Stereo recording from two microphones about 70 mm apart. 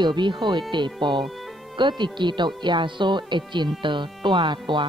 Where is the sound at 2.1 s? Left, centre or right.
Right.